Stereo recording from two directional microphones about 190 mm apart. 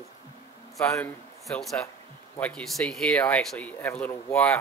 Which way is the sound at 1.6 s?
Centre (ahead or behind).